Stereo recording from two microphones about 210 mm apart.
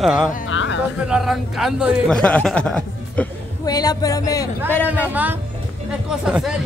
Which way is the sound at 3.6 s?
20° left (ahead or behind).